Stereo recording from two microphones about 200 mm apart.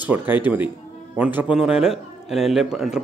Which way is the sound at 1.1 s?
10° right (ahead or behind).